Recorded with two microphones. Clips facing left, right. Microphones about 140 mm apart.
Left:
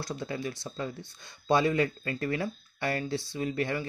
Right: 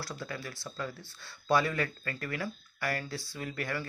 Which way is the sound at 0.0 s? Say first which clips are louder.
Left 6 dB; 20° left (ahead or behind).